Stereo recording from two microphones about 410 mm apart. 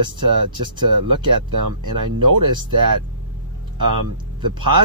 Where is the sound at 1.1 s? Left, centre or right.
Right.